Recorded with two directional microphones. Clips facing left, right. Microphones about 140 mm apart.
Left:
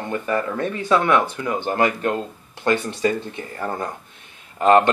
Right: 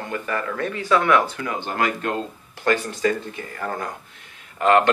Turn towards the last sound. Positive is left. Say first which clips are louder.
# left 2 dB
turn(degrees=20)  # may be behind; listen again after turning